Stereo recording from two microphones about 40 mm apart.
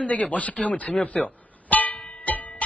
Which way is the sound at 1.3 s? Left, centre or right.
Left.